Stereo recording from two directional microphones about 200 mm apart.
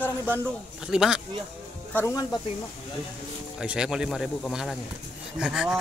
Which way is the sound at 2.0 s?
15° left (ahead or behind).